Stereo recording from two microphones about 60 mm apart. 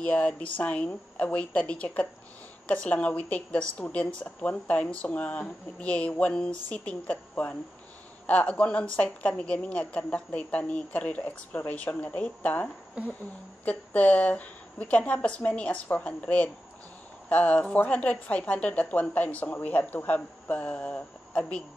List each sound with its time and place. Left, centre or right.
0.0 s a woman's voice: left